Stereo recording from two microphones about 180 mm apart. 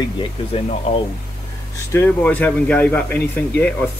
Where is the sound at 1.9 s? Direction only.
10° left (ahead or behind).